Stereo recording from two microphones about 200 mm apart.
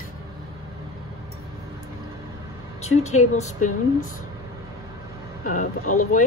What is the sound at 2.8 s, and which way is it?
Speech, 35° left (ahead or behind).